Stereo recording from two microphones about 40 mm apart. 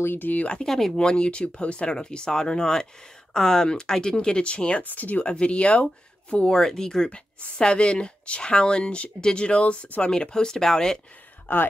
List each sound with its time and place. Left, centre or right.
0.2 s speech: left
0.7 s speech: centre
0.9 s speech: left
4.8 s speech: left
5.2 s speech: left
6.5 s speech: centre
11.4 s speech: left